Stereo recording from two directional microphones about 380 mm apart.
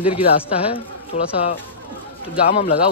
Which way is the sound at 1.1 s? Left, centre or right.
Centre.